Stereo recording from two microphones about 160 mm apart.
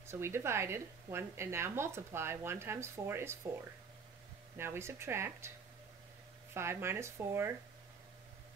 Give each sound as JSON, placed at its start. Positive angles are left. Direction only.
{"t": 0.0, "sound": "a woman's voice", "side_deg": -15}
{"t": 4.6, "sound": "a woman's voice", "side_deg": -15}
{"t": 6.5, "sound": "a woman's voice", "side_deg": -15}